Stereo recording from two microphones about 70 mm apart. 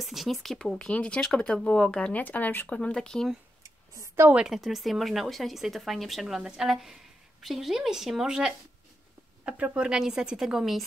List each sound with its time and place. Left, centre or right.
0.0 s speech: centre
2.2 s speech: left
2.8 s speech: centre
3.6 s a sound: right
4.5 s a woman's voice: centre